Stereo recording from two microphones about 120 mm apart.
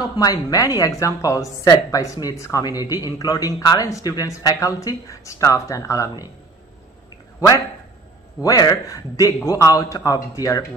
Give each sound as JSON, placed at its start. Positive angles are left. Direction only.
{"t": 0.2, "sound": "a man's voice", "side_deg": 30}
{"t": 7.3, "sound": "a man's voice", "side_deg": 30}